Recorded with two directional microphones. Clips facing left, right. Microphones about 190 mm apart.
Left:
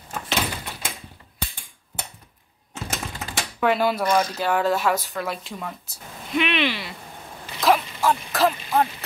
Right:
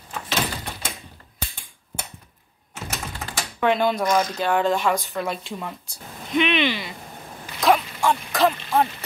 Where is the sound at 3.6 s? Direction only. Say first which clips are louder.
Right 1 dB; 5° left (ahead or behind).